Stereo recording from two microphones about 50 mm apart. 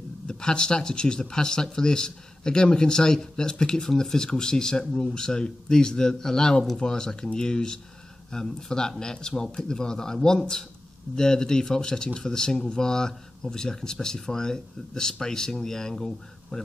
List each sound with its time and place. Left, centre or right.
0.3 s speech: centre